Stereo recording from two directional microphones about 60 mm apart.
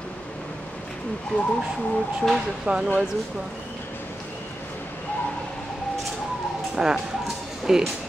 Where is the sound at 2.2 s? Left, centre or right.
Centre.